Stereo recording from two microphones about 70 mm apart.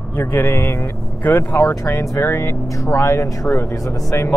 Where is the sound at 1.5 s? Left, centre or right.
Left.